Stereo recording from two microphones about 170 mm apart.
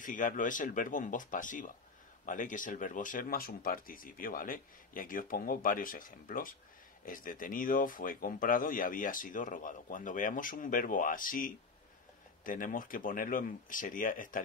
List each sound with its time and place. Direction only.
0.0 s speech: 50° left (ahead or behind)